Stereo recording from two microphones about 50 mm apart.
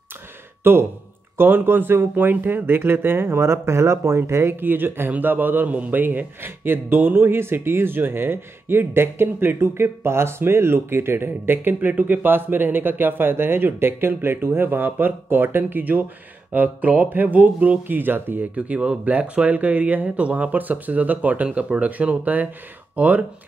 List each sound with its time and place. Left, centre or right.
0.7 s a man's voice: right
4.3 s a man's voice: right